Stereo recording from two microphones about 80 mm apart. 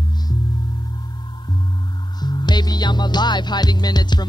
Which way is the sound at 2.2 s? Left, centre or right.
Left.